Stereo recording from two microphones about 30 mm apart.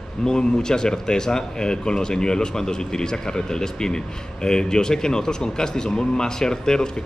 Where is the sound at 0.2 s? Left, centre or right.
Left.